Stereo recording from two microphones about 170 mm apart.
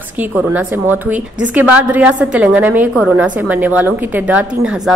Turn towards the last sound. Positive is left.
turn(degrees=-10)  # may be behind; listen again after turning